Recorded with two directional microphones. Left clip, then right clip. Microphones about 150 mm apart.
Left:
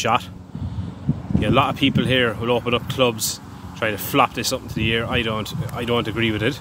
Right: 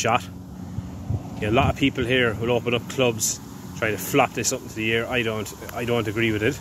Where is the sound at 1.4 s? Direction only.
35° left (ahead or behind).